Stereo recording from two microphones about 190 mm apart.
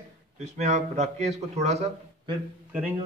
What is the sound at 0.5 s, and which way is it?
A man's voice, 35° right (ahead or behind).